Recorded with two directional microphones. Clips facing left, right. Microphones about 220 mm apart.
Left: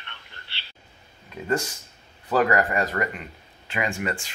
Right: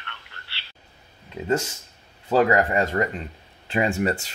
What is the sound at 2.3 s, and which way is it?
Speech, 25° right (ahead or behind).